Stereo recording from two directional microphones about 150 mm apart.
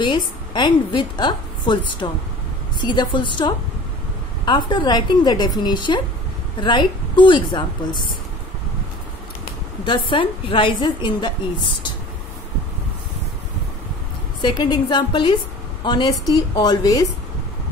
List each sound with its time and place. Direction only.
0.0 s a woman's voice: 30° left (ahead or behind)
4.5 s a woman's voice: 30° left (ahead or behind)
9.8 s a woman's voice: 35° left (ahead or behind)
14.4 s a woman's voice: 30° left (ahead or behind)